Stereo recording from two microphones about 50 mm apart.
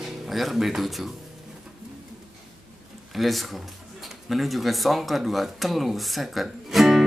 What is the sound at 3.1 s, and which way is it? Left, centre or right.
Speech, centre.